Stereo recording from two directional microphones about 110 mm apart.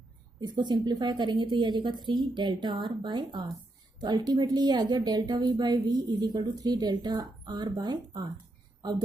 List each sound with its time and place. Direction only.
0.4 s a woman's voice: 40° right (ahead or behind)